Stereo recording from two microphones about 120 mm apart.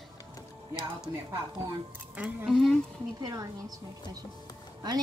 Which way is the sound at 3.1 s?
35° right (ahead or behind).